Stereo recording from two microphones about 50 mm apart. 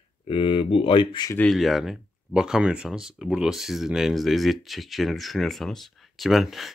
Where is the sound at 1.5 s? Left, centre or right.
Centre.